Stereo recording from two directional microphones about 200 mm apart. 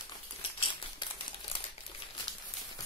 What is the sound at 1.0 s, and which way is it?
Typewriter, 20° left (ahead or behind).